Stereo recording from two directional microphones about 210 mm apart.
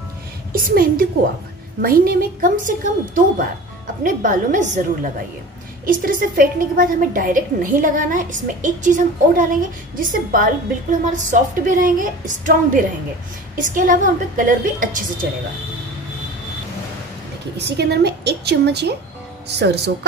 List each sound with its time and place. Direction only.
0.5 s a woman's voice: 45° right (ahead or behind)
4.0 s a woman's voice: 40° right (ahead or behind)
5.9 s a woman's voice: 40° right (ahead or behind)
17.6 s a woman's voice: 55° right (ahead or behind)